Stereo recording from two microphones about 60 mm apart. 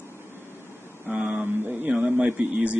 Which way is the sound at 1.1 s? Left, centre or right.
Right.